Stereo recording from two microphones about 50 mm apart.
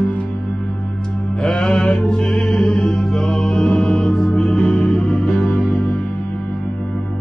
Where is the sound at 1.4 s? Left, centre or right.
Centre.